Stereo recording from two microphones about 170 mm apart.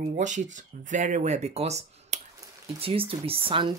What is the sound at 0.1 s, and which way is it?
Speech, 45° right (ahead or behind).